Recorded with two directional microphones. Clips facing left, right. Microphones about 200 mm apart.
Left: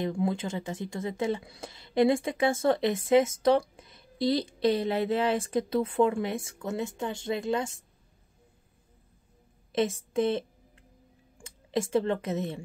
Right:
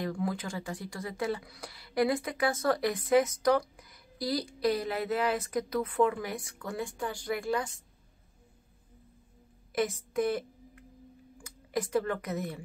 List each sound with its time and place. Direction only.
0.0 s speech: 25° left (ahead or behind)
9.7 s a sound: 25° left (ahead or behind)
11.4 s a woman's voice: 25° left (ahead or behind)